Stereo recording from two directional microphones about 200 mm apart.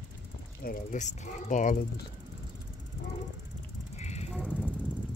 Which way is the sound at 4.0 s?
35° left (ahead or behind).